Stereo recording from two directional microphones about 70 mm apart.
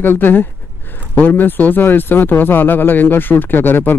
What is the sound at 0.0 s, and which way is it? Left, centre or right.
Speech, left.